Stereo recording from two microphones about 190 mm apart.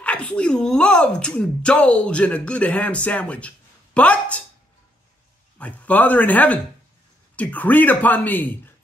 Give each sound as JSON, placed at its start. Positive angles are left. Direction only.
{"t": 0.0, "sound": "speech", "side_deg": 5}
{"t": 5.6, "sound": "speech", "side_deg": 5}